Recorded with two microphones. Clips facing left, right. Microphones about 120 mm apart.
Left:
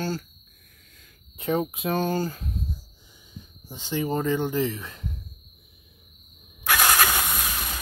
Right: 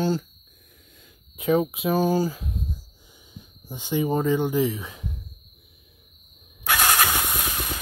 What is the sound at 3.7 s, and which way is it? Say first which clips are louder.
Speech: right 3 dB; 15° right (ahead or behind).